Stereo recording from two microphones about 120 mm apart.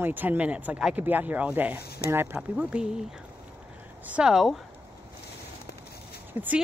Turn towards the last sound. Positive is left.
turn(degrees=-15)  # may be behind; listen again after turning